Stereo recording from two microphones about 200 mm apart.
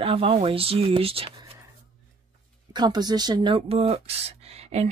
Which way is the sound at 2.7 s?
20° right (ahead or behind).